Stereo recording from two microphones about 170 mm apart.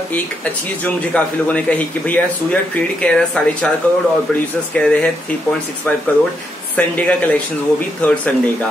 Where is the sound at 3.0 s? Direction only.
5° left (ahead or behind).